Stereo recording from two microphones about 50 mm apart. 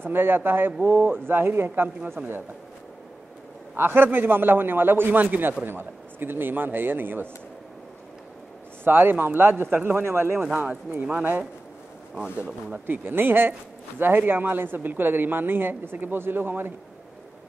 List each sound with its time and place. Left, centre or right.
0.0 s speech: right
3.7 s speech: right
5.7 s speech: right
8.8 s speech: right
10.6 s speech: right
12.2 s speech: centre
12.7 s speech: right